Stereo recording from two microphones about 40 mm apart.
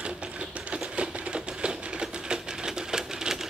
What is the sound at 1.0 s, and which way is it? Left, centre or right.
Typewriter, right.